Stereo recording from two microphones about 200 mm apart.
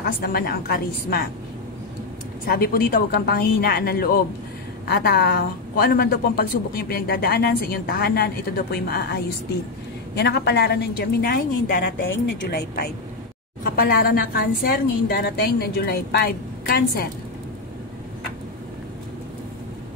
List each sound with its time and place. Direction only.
0.0 s a woman's voice: 50° left (ahead or behind)
2.4 s a woman's voice: 50° left (ahead or behind)
12.0 s a woman's voice: 65° left (ahead or behind); by 17.1 s 50° left (ahead or behind)